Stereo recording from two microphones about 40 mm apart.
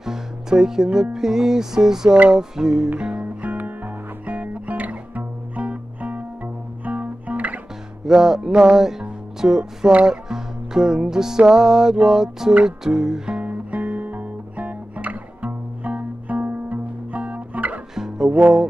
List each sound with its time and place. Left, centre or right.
0.0 s music: centre
3.0 s music: right
3.5 s music: right
8.0 s music: centre
13.4 s music: right
17.9 s music: centre